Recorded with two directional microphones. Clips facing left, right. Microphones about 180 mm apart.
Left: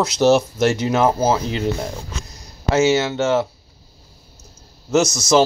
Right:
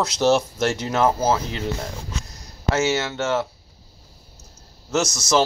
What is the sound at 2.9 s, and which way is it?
Speech, 20° left (ahead or behind).